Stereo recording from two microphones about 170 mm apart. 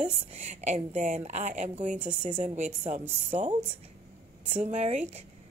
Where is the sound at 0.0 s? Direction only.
40° right (ahead or behind).